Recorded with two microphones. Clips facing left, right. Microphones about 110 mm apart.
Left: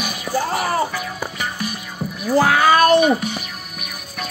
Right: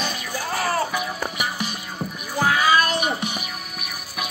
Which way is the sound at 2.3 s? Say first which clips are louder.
Left 5 dB; 70° left (ahead or behind).